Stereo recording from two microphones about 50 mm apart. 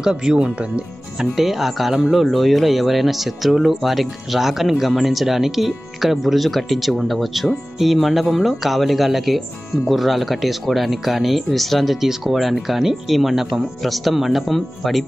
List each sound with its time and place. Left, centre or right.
0.0 s speech: centre
1.2 s speech: centre